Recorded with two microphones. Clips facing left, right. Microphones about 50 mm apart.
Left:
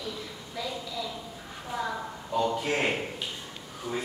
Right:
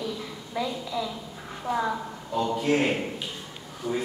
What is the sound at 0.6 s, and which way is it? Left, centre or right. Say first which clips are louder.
Speech: right 5 dB; right.